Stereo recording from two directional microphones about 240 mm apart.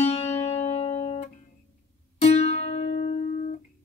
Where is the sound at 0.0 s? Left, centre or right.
Left.